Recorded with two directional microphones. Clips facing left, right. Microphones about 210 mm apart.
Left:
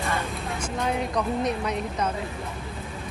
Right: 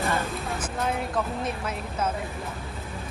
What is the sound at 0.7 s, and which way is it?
Speech, centre (ahead or behind).